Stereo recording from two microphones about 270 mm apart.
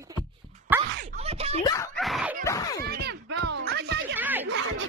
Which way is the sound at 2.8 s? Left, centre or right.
Right.